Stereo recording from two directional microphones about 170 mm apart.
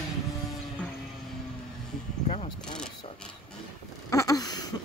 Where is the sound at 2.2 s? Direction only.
40° left (ahead or behind).